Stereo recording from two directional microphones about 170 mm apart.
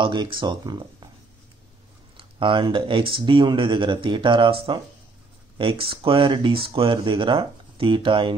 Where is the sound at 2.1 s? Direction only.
30° right (ahead or behind).